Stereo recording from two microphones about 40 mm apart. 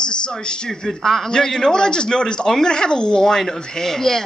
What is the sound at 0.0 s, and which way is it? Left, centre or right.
Speech, left.